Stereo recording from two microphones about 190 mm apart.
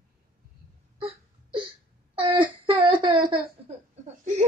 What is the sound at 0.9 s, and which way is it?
Wail, 25° right (ahead or behind).